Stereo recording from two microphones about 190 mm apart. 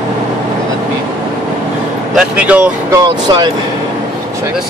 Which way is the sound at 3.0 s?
20° right (ahead or behind).